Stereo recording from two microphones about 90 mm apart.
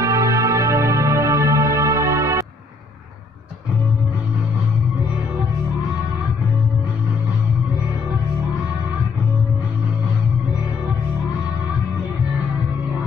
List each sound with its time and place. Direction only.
0.0 s music: 35° right (ahead or behind)